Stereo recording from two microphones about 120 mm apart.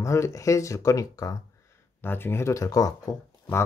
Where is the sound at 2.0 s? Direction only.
20° left (ahead or behind).